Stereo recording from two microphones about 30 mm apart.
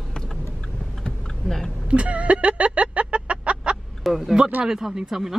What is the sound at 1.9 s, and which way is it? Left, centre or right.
Vehicle, right.